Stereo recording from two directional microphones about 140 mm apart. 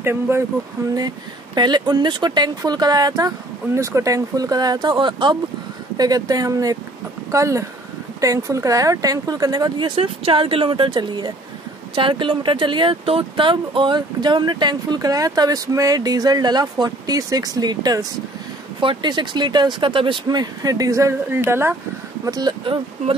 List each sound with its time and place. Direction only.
0.0 s speech: 15° right (ahead or behind)
0.9 s speech: 30° right (ahead or behind)
22.2 s speech: 30° right (ahead or behind)